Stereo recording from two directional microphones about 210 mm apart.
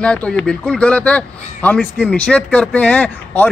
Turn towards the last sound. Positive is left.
turn(degrees=5)  # may be behind; listen again after turning